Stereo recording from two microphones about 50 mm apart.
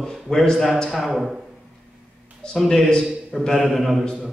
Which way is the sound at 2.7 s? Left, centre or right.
Centre.